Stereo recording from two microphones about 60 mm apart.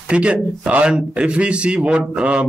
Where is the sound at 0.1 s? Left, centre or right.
Centre.